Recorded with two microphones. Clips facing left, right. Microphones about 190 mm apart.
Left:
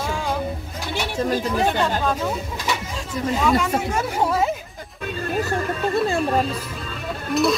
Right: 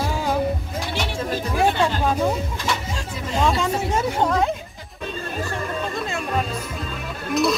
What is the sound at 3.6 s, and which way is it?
Speech, 25° right (ahead or behind).